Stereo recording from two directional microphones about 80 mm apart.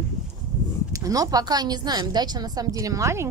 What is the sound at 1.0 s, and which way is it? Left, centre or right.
A woman's voice, right.